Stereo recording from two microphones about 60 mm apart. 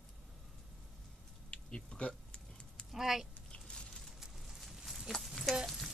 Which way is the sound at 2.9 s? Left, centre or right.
Centre.